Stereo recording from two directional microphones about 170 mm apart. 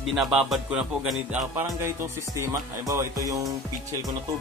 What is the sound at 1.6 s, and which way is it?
Music, 15° right (ahead or behind).